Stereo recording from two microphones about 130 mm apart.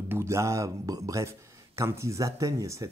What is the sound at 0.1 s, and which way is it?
Speech, 20° right (ahead or behind).